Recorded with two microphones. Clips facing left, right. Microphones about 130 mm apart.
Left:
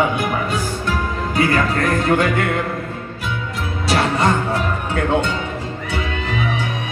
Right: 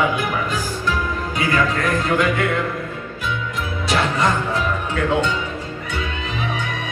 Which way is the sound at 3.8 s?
30° left (ahead or behind).